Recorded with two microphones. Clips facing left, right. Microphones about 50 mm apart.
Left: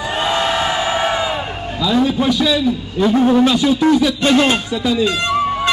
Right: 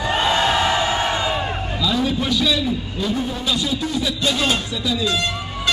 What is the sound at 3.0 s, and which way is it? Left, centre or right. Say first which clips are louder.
Speech: left 15 dB; left.